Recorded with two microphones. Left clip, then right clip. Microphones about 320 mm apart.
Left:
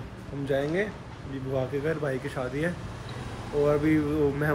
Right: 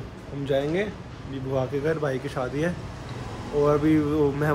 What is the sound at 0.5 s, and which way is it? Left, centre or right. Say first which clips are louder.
Speech: right 2 dB; centre.